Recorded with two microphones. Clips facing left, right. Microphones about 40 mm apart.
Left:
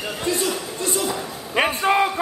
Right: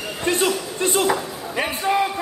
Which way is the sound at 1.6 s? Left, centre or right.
Left.